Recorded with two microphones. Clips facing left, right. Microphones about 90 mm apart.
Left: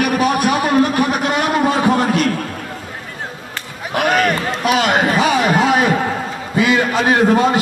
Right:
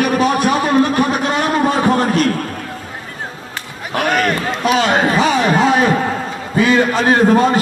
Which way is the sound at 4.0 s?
40° right (ahead or behind).